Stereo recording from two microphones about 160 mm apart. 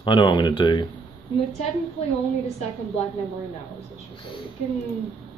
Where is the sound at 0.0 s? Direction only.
30° left (ahead or behind).